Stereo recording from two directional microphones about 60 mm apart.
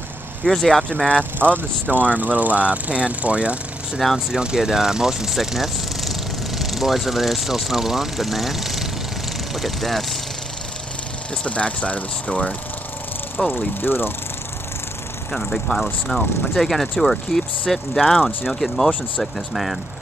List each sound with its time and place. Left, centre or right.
0.4 s speech: centre
1.4 s speech: right; by 10.1 s centre
11.4 s speech: left
13.4 s speech: centre
13.7 s speech: left
15.3 s speech: centre